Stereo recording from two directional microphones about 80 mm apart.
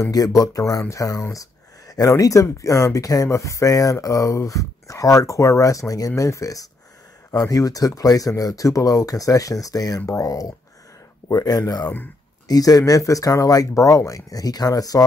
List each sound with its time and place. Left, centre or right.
0.0 s speech: left
11.2 s speech: left